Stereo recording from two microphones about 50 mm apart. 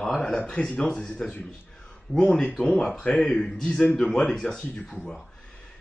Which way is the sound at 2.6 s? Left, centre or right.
Centre.